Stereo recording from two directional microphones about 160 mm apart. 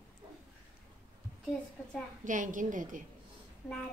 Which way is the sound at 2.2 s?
55° right (ahead or behind).